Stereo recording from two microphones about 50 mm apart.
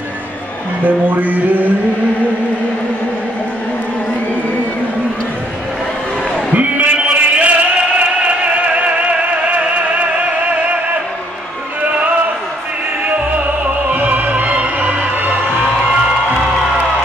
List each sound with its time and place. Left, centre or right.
0.8 s music: right
6.5 s a sound: right
13.8 s music: right